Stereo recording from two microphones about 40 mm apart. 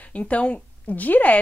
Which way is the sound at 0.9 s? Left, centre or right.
Left.